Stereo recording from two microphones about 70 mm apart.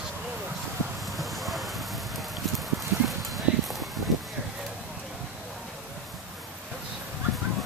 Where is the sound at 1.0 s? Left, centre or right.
Centre.